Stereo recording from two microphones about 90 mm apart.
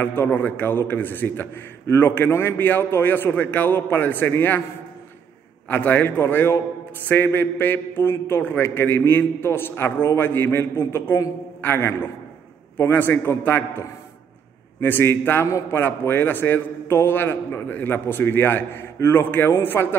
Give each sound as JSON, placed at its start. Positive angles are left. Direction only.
{"t": 0.0, "sound": "a man's voice", "side_deg": 25}
{"t": 5.7, "sound": "a man's voice", "side_deg": 20}